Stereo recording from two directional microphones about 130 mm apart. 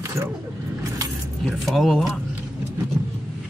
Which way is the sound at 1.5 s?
Centre (ahead or behind).